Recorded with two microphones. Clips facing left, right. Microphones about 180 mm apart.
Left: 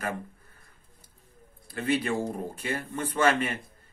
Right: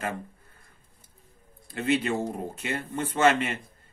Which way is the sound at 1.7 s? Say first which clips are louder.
Right 1 dB; 25° right (ahead or behind).